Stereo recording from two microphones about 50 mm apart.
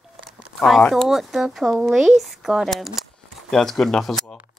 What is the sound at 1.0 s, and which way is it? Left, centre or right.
Speech, centre.